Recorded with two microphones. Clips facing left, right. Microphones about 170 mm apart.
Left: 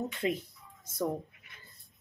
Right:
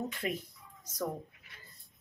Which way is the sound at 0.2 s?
25° left (ahead or behind).